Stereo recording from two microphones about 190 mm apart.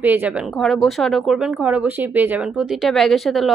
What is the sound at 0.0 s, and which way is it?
Speech, 10° right (ahead or behind).